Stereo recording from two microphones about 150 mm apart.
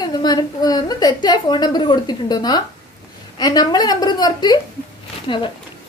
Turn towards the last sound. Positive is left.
turn(degrees=35)  # may be behind; listen again after turning